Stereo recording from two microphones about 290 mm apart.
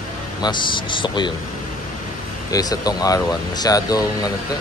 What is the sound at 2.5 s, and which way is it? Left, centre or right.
Speech, centre.